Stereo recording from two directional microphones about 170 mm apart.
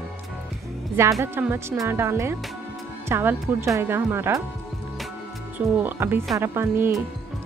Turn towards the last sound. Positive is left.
turn(degrees=-15)  # may be behind; listen again after turning